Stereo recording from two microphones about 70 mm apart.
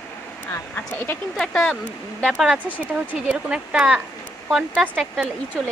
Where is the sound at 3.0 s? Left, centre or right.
Centre.